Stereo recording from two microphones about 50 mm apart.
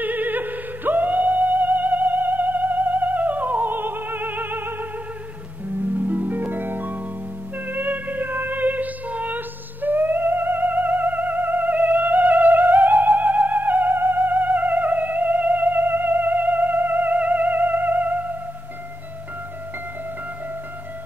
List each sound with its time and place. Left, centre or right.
0.0 s music: right
5.7 s harp: right
7.5 s music: right